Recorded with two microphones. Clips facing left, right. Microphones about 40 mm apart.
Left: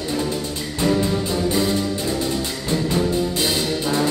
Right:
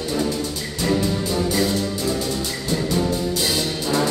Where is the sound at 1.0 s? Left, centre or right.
Left.